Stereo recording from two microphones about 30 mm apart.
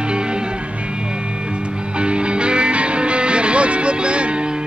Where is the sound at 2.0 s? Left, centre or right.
Right.